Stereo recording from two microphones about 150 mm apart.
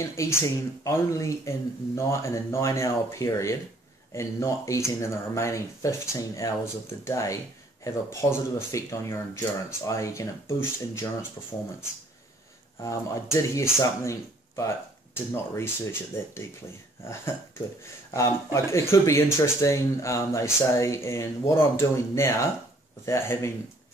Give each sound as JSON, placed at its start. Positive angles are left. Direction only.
{"t": 0.0, "sound": "speech", "side_deg": 20}
{"t": 12.8, "sound": "speech", "side_deg": 20}